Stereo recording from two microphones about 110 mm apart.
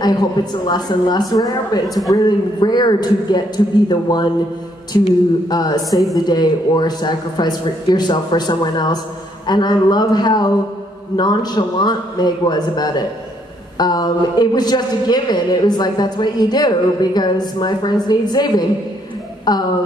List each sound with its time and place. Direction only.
0.0 s a man's voice: 40° left (ahead or behind)
4.9 s a sound: 45° left (ahead or behind)
5.5 s a man's voice: 40° left (ahead or behind)